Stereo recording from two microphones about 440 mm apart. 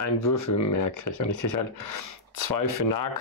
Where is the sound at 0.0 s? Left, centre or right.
Left.